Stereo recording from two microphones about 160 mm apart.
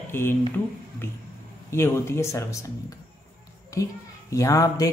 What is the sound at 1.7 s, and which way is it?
Speech, 15° left (ahead or behind).